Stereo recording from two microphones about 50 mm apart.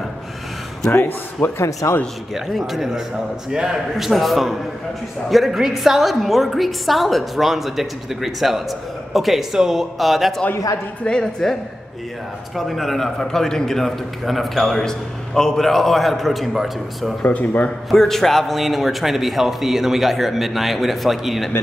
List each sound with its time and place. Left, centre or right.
0.9 s speech: left
2.3 s a woman's voice: centre
4.1 s a woman's voice: centre
11.1 s a woman's voice: centre
12.5 s a woman's voice: centre
17.2 s speech: left
17.9 s a woman's voice: centre